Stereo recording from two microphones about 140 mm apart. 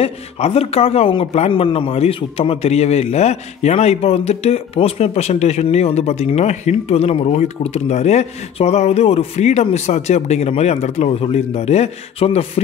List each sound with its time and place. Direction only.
0.0 s a man's voice: 45° left (ahead or behind)